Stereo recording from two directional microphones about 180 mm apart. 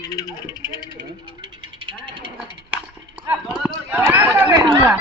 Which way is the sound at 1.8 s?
25° right (ahead or behind).